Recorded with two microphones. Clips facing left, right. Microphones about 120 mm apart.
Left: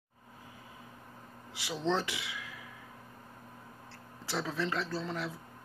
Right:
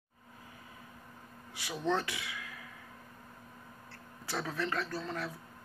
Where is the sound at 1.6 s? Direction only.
25° left (ahead or behind).